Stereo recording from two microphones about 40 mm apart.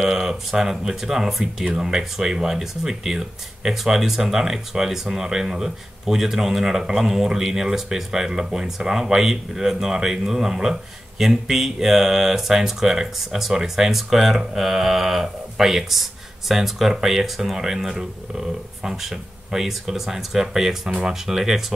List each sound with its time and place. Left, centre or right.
0.0 s speech: centre